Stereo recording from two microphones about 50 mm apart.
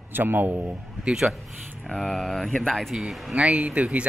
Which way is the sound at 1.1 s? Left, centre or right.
Centre.